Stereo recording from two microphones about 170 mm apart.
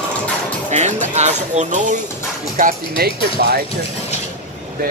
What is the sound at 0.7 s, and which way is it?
Speech, 45° right (ahead or behind).